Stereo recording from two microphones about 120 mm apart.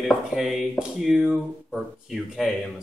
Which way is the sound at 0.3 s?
Centre (ahead or behind).